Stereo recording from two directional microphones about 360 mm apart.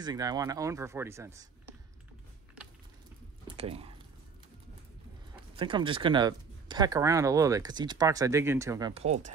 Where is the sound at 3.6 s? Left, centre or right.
Centre.